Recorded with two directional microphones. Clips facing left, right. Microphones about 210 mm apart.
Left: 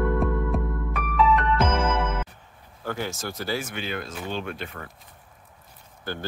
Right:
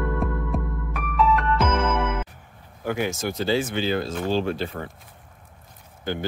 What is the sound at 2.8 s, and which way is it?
Speech, 15° right (ahead or behind).